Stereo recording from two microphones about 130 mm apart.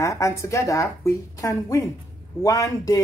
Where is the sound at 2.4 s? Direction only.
25° left (ahead or behind).